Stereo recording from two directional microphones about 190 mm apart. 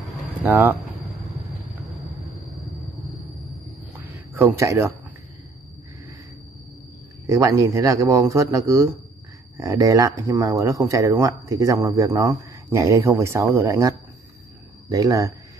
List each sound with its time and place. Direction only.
0.4 s speech: 10° right (ahead or behind)
4.0 s a sound: 10° right (ahead or behind)
7.2 s speech: 15° right (ahead or behind)